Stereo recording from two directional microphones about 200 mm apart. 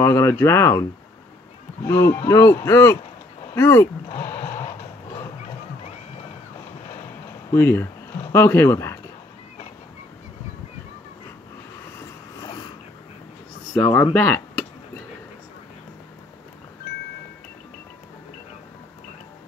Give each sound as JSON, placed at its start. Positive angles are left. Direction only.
{"t": 0.0, "sound": "speech", "side_deg": 15}
{"t": 1.9, "sound": "speech", "side_deg": 15}
{"t": 3.5, "sound": "a sound", "side_deg": 15}
{"t": 7.5, "sound": "speech", "side_deg": 10}
{"t": 12.0, "sound": "vehicle", "side_deg": 20}
{"t": 13.7, "sound": "speech", "side_deg": 10}
{"t": 14.1, "sound": "a sound", "side_deg": 10}